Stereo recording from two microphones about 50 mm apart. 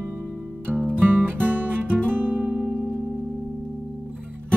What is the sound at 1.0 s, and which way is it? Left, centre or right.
Music, right.